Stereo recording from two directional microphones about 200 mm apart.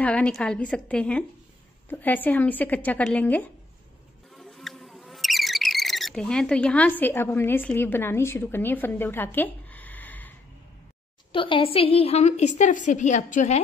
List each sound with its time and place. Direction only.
0.0 s a woman's voice: 5° left (ahead or behind)
4.4 s a sound: centre (ahead or behind)
11.3 s a woman's voice: 25° left (ahead or behind)